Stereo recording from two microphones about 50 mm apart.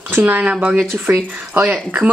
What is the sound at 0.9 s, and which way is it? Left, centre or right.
Speech, right.